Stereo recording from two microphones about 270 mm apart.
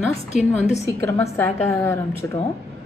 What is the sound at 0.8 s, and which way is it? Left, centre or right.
A woman's voice, centre.